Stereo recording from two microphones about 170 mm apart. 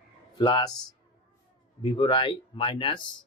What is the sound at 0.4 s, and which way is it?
Speech, 25° left (ahead or behind).